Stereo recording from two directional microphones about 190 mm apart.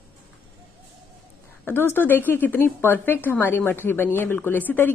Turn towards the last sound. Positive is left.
turn(degrees=10)  # may be behind; listen again after turning